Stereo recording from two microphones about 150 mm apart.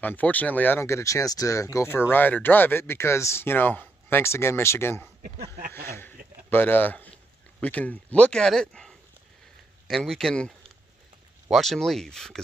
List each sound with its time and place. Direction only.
0.0 s speech: 10° left (ahead or behind)
5.9 s a sound: 15° left (ahead or behind)
6.5 s speech: 15° left (ahead or behind)